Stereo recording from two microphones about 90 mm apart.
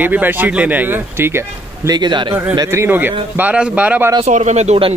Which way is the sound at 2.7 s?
25° right (ahead or behind).